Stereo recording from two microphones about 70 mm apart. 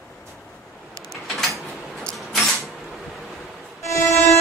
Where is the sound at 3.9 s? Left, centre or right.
Left.